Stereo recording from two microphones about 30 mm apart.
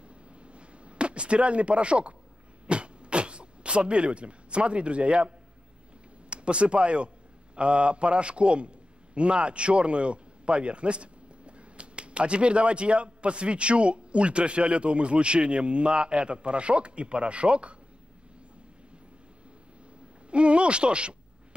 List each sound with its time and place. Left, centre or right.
0.1 s a sound: right
6.3 s a man's voice: right
20.2 s speech: right